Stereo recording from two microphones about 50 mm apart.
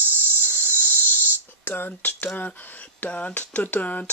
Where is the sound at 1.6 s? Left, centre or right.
Left.